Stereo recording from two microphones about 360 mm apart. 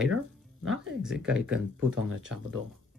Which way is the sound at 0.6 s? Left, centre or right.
Right.